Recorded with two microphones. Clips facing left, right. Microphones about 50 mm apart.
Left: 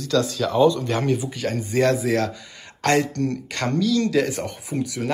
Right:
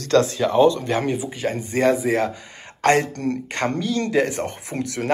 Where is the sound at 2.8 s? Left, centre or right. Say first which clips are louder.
Right 2 dB; right.